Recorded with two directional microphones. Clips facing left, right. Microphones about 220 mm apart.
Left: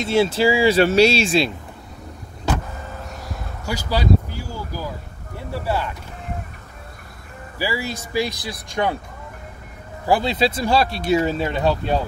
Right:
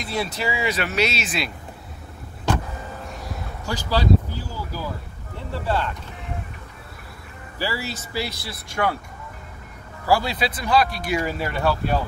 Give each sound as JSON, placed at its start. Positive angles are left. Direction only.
{"t": 0.0, "sound": "speech", "side_deg": 25}
{"t": 3.6, "sound": "a sound", "side_deg": 10}
{"t": 5.5, "sound": "speech", "side_deg": 10}
{"t": 7.5, "sound": "speech", "side_deg": 10}
{"t": 10.0, "sound": "speech", "side_deg": 20}